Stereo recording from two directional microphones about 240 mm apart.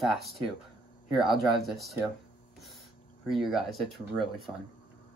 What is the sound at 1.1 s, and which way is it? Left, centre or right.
Speech, centre.